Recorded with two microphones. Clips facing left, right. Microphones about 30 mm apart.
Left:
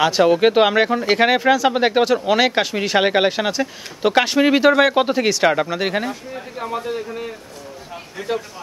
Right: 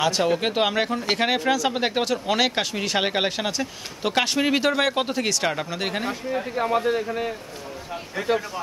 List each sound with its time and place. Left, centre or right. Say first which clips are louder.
0.0 s speech: left 7 dB; centre
6.0 s speech: right 2 dB; centre
8.2 s a man's voice: right 1 dB; right